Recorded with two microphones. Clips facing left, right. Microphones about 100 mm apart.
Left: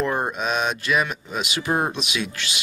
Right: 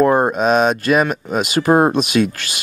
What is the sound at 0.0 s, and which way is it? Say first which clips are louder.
Speech: right 10 dB; 45° right (ahead or behind).